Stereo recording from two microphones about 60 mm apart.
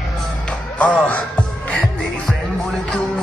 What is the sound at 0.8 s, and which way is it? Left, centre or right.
Music, left.